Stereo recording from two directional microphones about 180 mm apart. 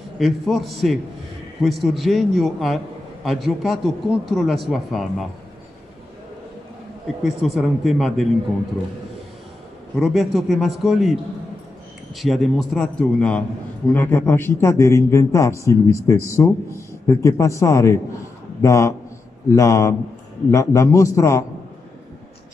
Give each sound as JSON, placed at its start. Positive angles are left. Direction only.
{"t": 0.2, "sound": "a man's voice", "side_deg": 0}
{"t": 7.2, "sound": "a man's voice", "side_deg": 0}
{"t": 9.9, "sound": "a man's voice", "side_deg": 0}
{"t": 12.2, "sound": "a man's voice", "side_deg": 0}